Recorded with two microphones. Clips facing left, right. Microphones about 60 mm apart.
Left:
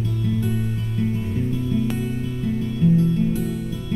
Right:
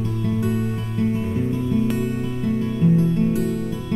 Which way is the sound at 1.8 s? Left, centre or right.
Centre.